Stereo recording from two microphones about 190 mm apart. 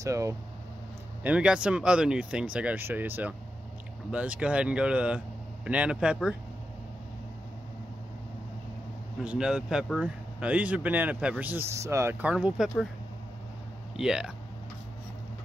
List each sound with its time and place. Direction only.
0.0 s speech: 15° right (ahead or behind)
9.2 s speech: 5° right (ahead or behind)
13.9 s speech: 5° right (ahead or behind)